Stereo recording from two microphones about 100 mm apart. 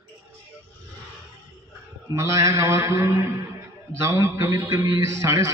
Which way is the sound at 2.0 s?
30° right (ahead or behind).